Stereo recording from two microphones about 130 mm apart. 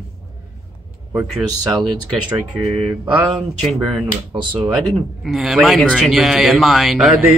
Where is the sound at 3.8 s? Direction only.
35° right (ahead or behind).